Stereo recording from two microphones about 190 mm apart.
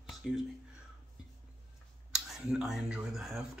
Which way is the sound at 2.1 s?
5° right (ahead or behind).